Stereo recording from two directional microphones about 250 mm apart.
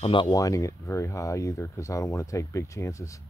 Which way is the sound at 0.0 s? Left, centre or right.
Centre.